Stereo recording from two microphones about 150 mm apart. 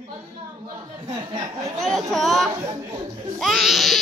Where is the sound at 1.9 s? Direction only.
Centre (ahead or behind).